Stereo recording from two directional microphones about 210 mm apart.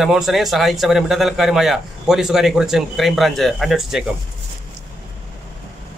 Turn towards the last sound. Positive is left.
turn(degrees=0)  # may be behind; listen again after turning